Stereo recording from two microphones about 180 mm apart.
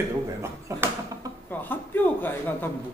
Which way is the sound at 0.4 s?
15° right (ahead or behind).